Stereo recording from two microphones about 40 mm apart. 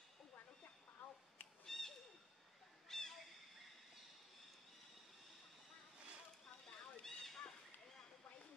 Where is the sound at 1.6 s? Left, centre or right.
Centre.